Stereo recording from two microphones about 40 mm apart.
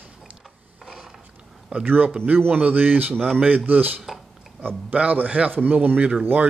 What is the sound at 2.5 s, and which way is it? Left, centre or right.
Speech, right.